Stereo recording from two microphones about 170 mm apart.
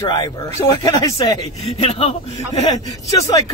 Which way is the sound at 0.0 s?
25° left (ahead or behind).